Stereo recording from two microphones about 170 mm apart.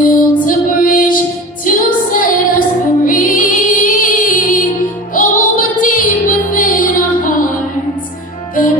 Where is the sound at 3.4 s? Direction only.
50° left (ahead or behind).